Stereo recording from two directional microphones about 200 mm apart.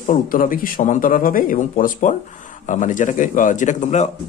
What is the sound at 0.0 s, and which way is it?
Speech, 45° left (ahead or behind).